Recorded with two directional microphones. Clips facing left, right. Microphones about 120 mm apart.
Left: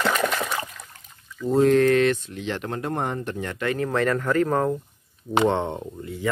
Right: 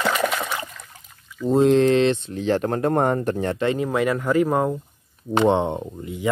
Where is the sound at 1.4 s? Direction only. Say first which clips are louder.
Right 2 dB; 20° right (ahead or behind).